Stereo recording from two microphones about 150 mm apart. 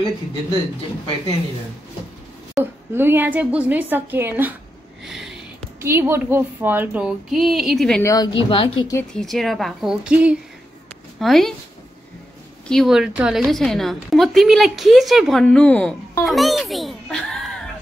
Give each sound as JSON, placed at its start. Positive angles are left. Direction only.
{"t": 2.6, "sound": "speech", "side_deg": -15}
{"t": 5.0, "sound": "sniff", "side_deg": 0}
{"t": 5.8, "sound": "speech", "side_deg": -15}
{"t": 8.0, "sound": "speech", "side_deg": 20}
{"t": 8.3, "sound": "speech", "side_deg": 35}
{"t": 9.1, "sound": "a woman's voice", "side_deg": 0}
{"t": 12.6, "sound": "a woman's voice", "side_deg": 0}